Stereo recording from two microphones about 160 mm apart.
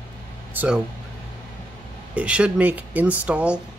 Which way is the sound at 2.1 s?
5° right (ahead or behind).